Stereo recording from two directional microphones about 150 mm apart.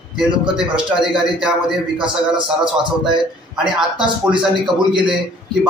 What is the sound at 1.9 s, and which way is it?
A man's voice, 30° right (ahead or behind).